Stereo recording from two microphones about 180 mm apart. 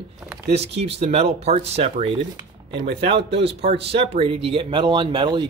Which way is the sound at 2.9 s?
65° right (ahead or behind).